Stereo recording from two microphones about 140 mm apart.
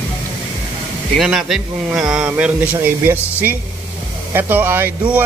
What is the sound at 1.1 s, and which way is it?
Speech, centre (ahead or behind).